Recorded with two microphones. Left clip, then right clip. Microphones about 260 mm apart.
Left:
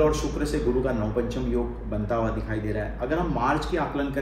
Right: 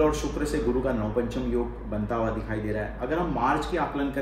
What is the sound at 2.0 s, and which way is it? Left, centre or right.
A man's voice, centre.